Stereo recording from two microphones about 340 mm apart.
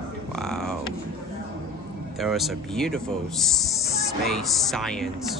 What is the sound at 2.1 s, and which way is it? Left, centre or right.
Speech, centre.